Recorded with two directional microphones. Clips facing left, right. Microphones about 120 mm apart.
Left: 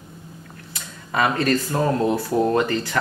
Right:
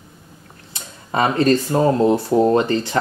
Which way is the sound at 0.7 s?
30° right (ahead or behind).